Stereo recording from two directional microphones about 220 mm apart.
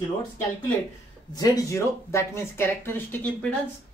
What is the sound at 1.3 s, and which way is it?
Speech, 15° left (ahead or behind).